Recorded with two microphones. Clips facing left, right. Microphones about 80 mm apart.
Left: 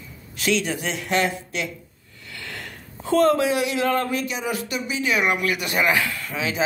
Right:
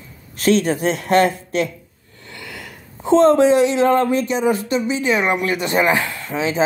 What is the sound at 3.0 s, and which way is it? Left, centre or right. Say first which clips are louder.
Speech: right 6 dB; right.